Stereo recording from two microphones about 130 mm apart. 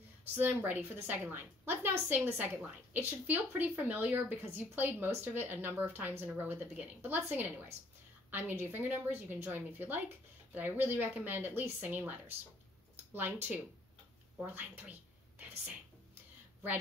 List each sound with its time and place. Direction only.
0.4 s a woman's voice: 15° right (ahead or behind)